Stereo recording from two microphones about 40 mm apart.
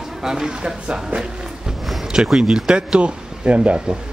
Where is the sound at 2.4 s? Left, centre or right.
Centre.